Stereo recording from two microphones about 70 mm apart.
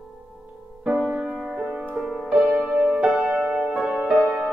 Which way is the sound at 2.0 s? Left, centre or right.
Centre.